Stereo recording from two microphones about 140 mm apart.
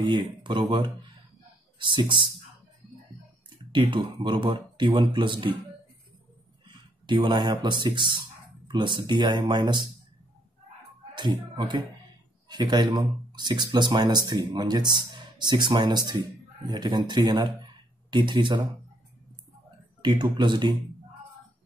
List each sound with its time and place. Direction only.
0.0 s speech: 35° right (ahead or behind)
3.7 s speech: 35° right (ahead or behind)
6.7 s speech: 35° right (ahead or behind)
11.1 s speech: 35° right (ahead or behind)
20.0 s speech: 30° right (ahead or behind)